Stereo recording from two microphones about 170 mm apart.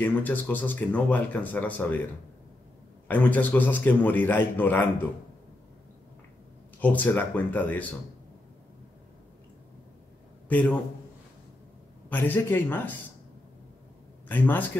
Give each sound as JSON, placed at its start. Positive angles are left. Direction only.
{"t": 0.0, "sound": "speech", "side_deg": 10}
{"t": 3.1, "sound": "speech", "side_deg": 10}
{"t": 6.8, "sound": "speech", "side_deg": 10}
{"t": 10.5, "sound": "speech", "side_deg": 10}
{"t": 12.1, "sound": "speech", "side_deg": 10}
{"t": 14.2, "sound": "a man's voice", "side_deg": 10}